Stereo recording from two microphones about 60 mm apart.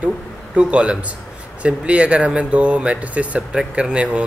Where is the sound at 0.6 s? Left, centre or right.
Centre.